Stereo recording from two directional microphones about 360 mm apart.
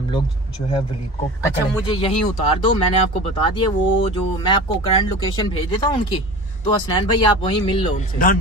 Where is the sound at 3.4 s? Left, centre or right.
Centre.